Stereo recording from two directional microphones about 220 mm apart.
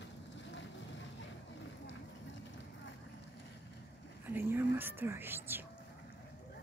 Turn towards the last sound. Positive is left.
turn(degrees=-10)  # may be behind; listen again after turning